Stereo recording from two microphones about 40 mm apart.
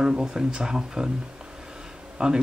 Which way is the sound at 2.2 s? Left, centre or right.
Centre.